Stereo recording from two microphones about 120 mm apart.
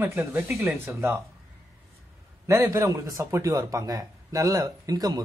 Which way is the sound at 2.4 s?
20° right (ahead or behind).